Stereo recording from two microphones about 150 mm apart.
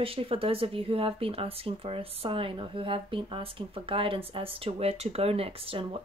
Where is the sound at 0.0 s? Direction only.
40° right (ahead or behind).